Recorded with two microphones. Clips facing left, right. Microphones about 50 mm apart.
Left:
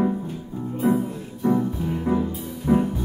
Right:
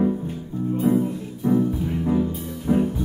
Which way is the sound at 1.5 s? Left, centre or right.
Left.